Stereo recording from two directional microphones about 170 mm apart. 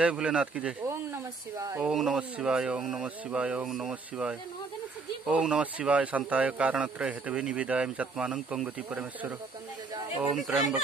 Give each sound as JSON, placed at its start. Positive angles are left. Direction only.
{"t": 0.0, "sound": "speech", "side_deg": -5}
{"t": 0.8, "sound": "a sound", "side_deg": -20}
{"t": 1.8, "sound": "a man's voice", "side_deg": -5}
{"t": 10.3, "sound": "speech", "side_deg": 0}